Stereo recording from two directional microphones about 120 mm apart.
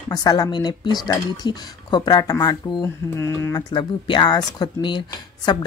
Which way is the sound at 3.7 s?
40° left (ahead or behind).